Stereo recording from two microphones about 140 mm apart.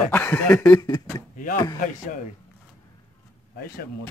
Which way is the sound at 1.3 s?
70° left (ahead or behind).